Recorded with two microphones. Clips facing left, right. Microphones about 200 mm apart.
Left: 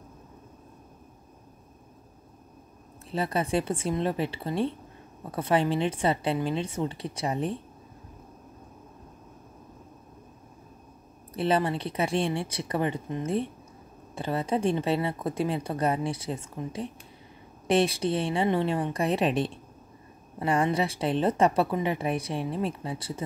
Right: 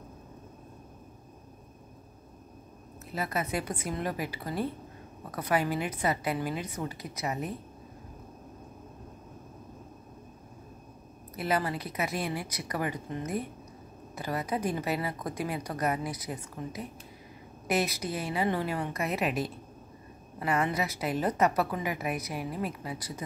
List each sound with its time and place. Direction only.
3.1 s a woman's voice: 30° left (ahead or behind)
11.3 s a woman's voice: 30° left (ahead or behind)